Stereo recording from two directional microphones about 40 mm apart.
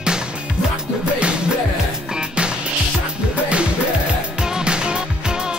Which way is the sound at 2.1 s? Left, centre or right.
Right.